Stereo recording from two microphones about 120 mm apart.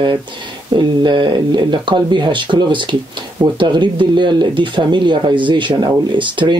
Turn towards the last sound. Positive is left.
turn(degrees=-40)  # may be behind; listen again after turning